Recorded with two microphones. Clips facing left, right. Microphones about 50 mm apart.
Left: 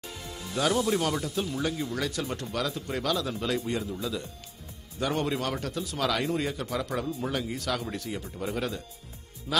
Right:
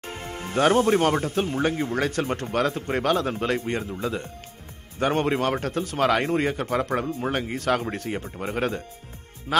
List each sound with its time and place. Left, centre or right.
0.0 s speech: right